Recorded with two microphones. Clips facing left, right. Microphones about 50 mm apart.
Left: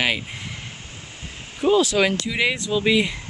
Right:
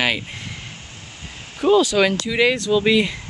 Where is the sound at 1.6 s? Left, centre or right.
Centre.